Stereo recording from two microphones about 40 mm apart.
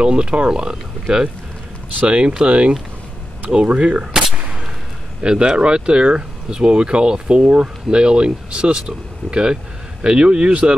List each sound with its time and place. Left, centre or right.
0.0 s speech: right
5.2 s speech: right